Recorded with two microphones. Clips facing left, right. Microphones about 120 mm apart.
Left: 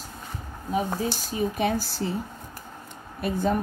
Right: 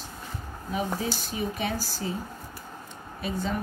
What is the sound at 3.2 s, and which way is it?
Speech, 55° left (ahead or behind).